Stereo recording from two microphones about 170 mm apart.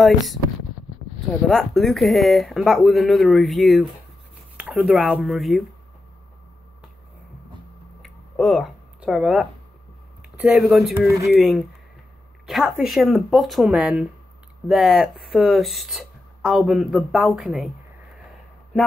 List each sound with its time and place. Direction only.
0.0 s speech: centre (ahead or behind)
1.5 s speech: centre (ahead or behind)
8.0 s a sound: centre (ahead or behind)
10.3 s speech: 5° right (ahead or behind)